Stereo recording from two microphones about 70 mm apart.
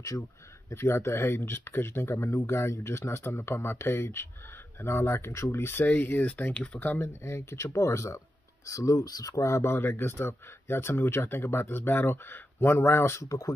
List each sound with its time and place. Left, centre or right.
0.1 s speech: left; by 6.8 s centre
6.8 s speech: left